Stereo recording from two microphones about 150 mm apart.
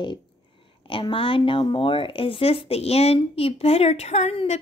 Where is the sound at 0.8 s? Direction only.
35° left (ahead or behind).